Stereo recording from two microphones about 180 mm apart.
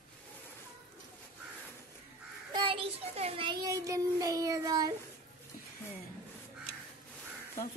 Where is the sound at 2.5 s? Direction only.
30° right (ahead or behind).